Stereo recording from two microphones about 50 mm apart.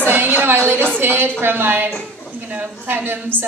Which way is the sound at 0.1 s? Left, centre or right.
Right.